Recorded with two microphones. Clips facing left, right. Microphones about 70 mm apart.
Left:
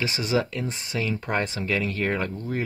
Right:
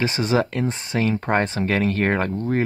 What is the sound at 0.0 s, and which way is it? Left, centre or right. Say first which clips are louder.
Speech: right 4 dB; right.